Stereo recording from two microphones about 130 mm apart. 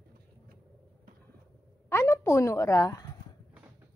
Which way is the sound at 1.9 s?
20° left (ahead or behind).